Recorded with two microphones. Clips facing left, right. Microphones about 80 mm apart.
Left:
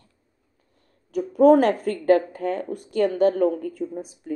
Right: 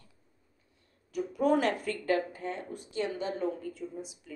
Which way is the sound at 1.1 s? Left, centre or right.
Left.